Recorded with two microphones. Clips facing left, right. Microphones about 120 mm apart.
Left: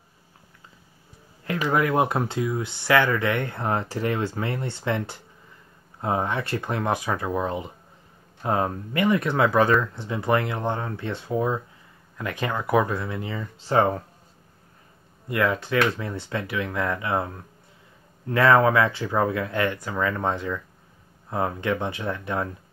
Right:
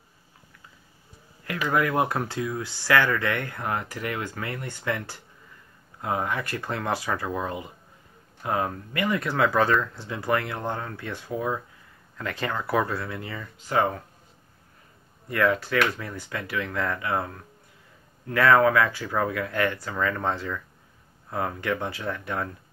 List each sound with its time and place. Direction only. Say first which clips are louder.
1.4 s speech: left 2 dB; 25° left (ahead or behind)
15.2 s speech: even; 20° left (ahead or behind)
18.3 s speech: left 1 dB; 25° left (ahead or behind)